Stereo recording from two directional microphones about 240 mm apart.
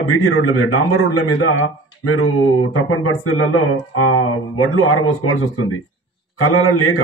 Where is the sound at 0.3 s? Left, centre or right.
Left.